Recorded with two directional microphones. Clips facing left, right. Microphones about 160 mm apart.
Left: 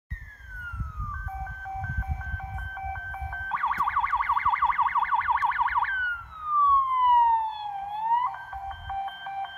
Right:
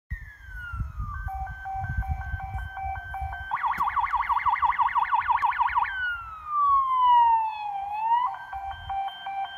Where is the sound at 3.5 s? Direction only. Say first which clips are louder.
Right 1 dB; 40° right (ahead or behind).